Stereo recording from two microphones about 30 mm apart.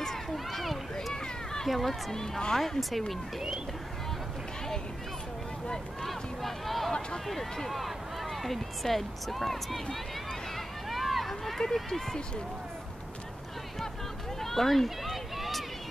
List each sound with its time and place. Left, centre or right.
0.3 s run: centre
1.1 s a sound: left
1.9 s speech: centre
3.1 s speech: centre
6.0 s speech: centre
7.7 s run: centre
8.8 s speech: centre
10.9 s a sound: centre
11.7 s speech: centre
14.4 s speech: centre